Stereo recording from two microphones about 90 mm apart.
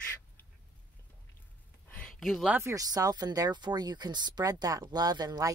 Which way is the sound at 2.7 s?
40° right (ahead or behind).